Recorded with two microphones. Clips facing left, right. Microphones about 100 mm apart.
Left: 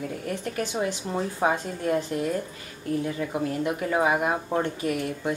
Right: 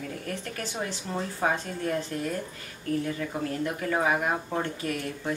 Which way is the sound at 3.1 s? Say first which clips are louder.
Left 3 dB; 15° left (ahead or behind).